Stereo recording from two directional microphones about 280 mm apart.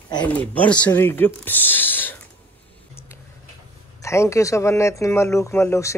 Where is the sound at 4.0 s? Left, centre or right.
Centre.